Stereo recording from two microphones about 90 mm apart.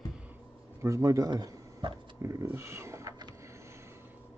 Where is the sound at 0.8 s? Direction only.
35° right (ahead or behind).